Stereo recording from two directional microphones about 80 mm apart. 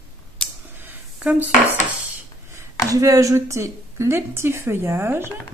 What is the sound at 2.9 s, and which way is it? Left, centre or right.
Speech, right.